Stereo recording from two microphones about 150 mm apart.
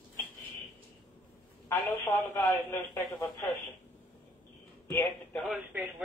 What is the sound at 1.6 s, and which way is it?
Speech, 15° left (ahead or behind).